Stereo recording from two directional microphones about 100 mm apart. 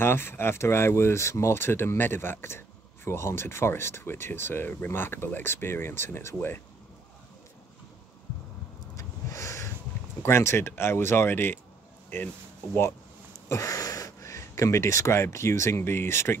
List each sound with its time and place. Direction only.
0.0 s speech: 25° left (ahead or behind)
8.9 s vehicle: 30° left (ahead or behind)
10.2 s speech: 25° left (ahead or behind)
13.5 s speech: 35° left (ahead or behind)